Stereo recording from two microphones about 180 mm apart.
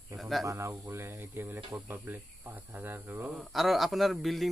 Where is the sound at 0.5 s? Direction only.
15° right (ahead or behind).